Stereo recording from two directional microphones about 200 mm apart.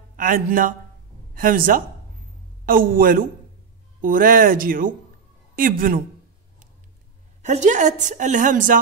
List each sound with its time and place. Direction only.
0.1 s speech: 45° right (ahead or behind)
7.4 s a woman's voice: 35° right (ahead or behind)